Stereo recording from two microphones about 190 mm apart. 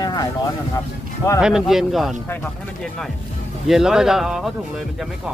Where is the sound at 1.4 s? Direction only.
5° right (ahead or behind).